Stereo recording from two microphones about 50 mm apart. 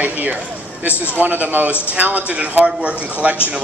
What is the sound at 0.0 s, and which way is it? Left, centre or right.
A man's voice, right.